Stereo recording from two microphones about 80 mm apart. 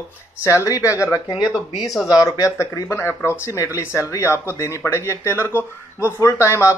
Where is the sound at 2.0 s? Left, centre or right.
Left.